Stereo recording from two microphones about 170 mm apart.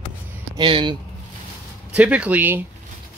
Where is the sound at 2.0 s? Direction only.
10° right (ahead or behind).